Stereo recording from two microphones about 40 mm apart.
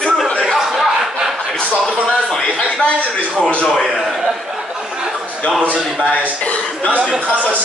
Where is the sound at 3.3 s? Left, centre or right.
Left.